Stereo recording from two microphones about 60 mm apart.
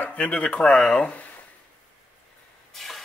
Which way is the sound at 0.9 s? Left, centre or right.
Left.